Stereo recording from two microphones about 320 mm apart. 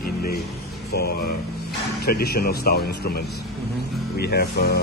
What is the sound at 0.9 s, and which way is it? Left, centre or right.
Speech, left.